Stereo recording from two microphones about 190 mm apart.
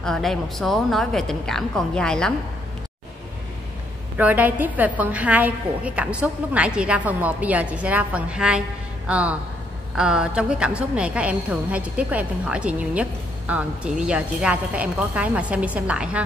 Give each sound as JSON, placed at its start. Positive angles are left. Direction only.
{"t": 0.0, "sound": "a woman's voice", "side_deg": 0}
{"t": 4.2, "sound": "a woman's voice", "side_deg": -10}